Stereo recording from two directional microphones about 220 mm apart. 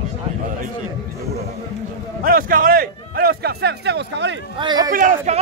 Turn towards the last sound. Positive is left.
turn(degrees=-35)  # may be behind; listen again after turning